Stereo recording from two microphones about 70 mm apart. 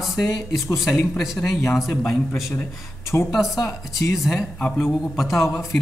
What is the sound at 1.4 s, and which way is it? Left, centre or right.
Speech, left.